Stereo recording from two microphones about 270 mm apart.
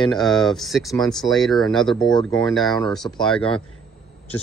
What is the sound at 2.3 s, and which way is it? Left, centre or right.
Speech, centre.